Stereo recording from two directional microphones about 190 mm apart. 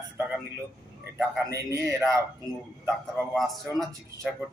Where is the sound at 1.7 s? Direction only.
15° right (ahead or behind).